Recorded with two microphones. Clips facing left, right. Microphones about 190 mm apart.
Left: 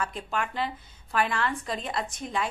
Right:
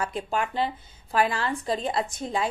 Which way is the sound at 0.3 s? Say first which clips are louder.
Right 4 dB; 30° right (ahead or behind).